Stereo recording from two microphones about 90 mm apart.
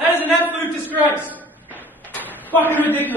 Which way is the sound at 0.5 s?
20° right (ahead or behind).